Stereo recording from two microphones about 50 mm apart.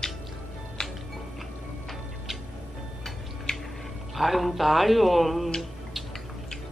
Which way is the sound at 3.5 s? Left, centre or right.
Centre.